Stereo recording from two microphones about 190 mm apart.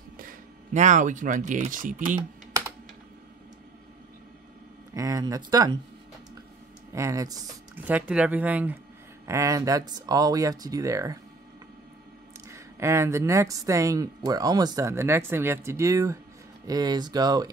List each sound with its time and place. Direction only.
0.2 s speech: 45° right (ahead or behind)
4.9 s speech: 20° right (ahead or behind)
6.9 s speech: 15° right (ahead or behind)
7.7 s speech: 10° right (ahead or behind)
12.4 s speech: 15° right (ahead or behind)